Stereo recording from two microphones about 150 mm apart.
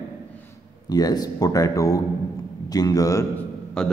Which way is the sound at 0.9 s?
25° left (ahead or behind).